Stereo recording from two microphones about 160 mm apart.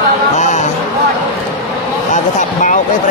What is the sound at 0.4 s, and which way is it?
Music, 50° left (ahead or behind).